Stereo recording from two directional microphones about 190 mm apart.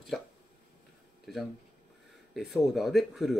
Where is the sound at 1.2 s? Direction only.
Centre (ahead or behind).